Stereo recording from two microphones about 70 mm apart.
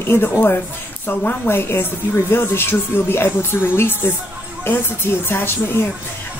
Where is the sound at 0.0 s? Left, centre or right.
Left.